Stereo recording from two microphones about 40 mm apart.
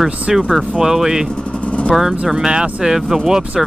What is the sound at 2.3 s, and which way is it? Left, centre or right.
Speech, right.